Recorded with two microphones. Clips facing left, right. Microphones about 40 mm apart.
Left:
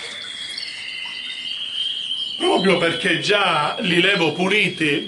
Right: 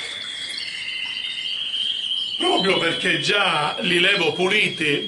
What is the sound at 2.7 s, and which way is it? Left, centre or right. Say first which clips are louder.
A man's voice: left 2 dB; centre.